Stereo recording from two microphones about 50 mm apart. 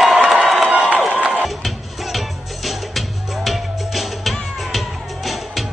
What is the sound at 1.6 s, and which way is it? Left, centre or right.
Music, centre.